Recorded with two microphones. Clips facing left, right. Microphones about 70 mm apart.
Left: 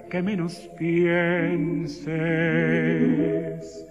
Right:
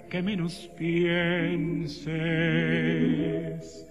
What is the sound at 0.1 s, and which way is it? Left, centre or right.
Music, centre.